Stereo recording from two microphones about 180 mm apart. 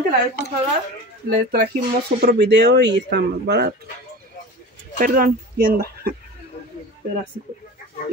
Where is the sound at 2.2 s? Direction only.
65° right (ahead or behind).